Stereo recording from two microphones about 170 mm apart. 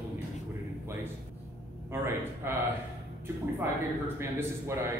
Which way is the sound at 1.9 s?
15° right (ahead or behind).